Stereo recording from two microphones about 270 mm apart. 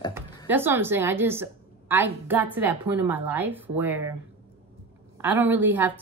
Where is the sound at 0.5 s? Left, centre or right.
Centre.